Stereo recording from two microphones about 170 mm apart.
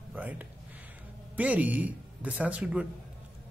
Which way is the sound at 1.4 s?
10° right (ahead or behind).